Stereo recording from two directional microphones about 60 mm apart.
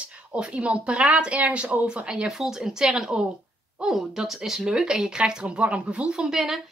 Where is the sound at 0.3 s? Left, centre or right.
Centre.